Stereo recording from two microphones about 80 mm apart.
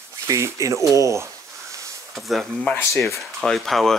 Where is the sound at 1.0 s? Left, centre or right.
Right.